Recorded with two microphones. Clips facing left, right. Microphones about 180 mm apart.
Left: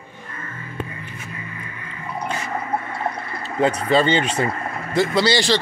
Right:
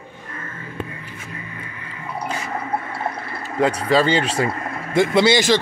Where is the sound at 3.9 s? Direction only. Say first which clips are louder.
Right 1 dB; 5° right (ahead or behind).